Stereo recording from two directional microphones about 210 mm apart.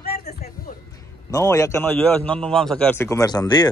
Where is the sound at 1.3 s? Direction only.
15° left (ahead or behind).